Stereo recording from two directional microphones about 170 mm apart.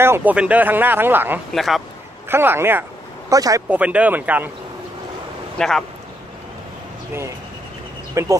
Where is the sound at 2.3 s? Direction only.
15° right (ahead or behind).